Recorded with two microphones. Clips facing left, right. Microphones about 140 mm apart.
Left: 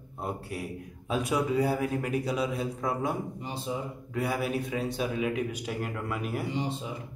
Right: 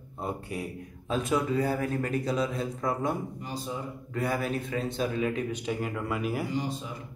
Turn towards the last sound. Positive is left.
turn(degrees=0)  # may be behind; listen again after turning